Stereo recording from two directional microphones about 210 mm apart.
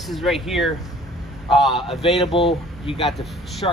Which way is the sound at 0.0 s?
Centre (ahead or behind).